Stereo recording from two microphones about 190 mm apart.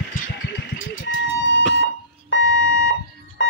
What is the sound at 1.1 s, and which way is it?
Music, 75° left (ahead or behind).